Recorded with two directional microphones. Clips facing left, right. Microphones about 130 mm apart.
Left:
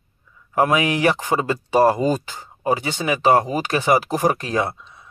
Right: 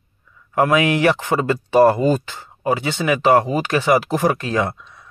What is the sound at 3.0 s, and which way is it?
Speech, 25° left (ahead or behind).